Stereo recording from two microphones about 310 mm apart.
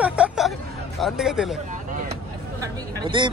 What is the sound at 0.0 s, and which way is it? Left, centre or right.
Hubbub, centre.